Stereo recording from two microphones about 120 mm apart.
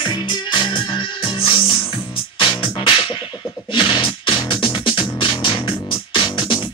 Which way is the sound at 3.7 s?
45° left (ahead or behind).